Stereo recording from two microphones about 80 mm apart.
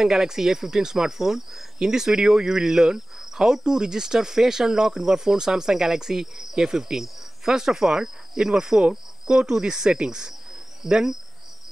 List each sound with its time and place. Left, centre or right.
0.0 s speech: centre
10.8 s cricket: centre